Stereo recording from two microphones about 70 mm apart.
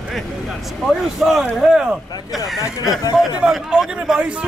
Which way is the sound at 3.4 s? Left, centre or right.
Centre.